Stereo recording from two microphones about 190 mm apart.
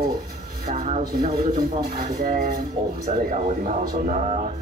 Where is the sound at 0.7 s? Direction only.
40° right (ahead or behind).